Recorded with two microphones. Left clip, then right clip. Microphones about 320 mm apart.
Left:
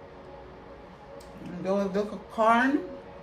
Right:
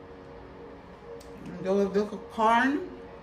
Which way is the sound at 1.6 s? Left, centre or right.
Centre.